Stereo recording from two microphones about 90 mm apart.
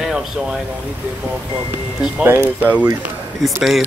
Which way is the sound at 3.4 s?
5° right (ahead or behind).